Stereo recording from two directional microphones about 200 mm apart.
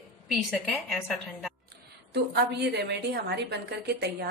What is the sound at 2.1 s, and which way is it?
A woman's voice, 55° right (ahead or behind).